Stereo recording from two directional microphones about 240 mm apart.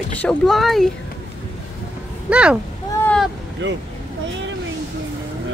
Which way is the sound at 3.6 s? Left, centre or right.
Right.